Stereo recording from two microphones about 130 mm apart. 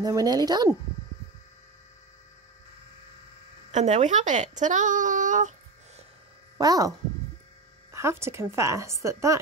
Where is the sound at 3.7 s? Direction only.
65° right (ahead or behind).